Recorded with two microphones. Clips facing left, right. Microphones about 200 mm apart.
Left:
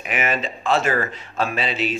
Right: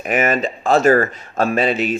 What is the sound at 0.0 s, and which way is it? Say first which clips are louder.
Speech: right 6 dB; 45° right (ahead or behind).